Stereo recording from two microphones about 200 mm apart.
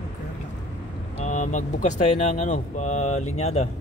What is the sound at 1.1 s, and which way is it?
Speech, 35° left (ahead or behind).